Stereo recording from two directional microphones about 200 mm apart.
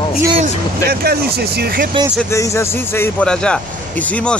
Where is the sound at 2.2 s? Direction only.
15° left (ahead or behind).